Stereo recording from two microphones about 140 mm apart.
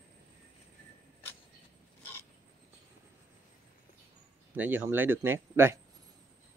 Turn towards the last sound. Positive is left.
turn(degrees=-15)  # may be behind; listen again after turning